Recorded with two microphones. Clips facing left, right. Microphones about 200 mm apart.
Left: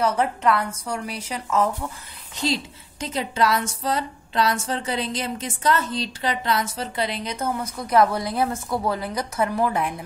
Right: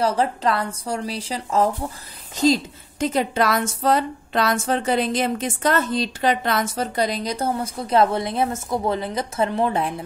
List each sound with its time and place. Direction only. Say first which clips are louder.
0.0 s a woman's voice: right 1 dB; 30° right (ahead or behind)